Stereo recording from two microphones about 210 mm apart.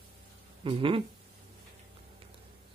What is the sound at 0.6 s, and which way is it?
Speech, 25° right (ahead or behind).